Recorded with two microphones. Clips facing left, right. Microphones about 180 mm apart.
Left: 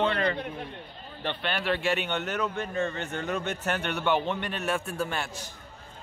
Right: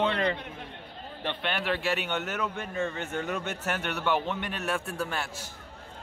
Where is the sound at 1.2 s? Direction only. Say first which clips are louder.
Left 1 dB; 15° right (ahead or behind).